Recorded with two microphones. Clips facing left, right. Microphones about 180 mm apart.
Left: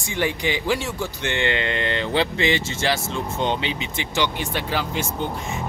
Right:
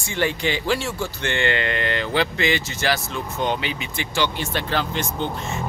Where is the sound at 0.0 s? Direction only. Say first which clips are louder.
Right 1 dB; 15° left (ahead or behind).